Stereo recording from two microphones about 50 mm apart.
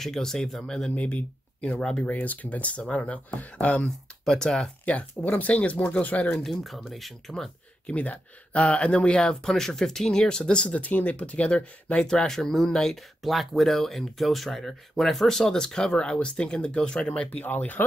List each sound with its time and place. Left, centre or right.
0.0 s speech: centre
0.9 s speech: left
2.0 s speech: left
4.3 s speech: centre
4.8 s speech: left
6.4 s speech: centre
7.8 s speech: left